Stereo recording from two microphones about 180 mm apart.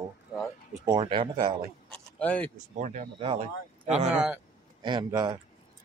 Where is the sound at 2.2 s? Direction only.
10° left (ahead or behind).